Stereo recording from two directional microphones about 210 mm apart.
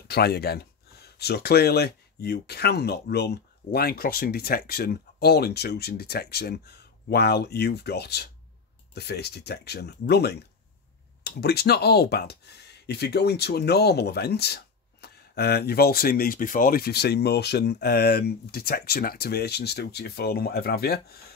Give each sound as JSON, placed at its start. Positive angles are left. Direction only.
{"t": 0.1, "sound": "speech", "side_deg": 50}